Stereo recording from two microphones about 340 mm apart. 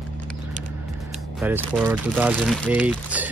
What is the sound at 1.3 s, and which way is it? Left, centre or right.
Speech, centre.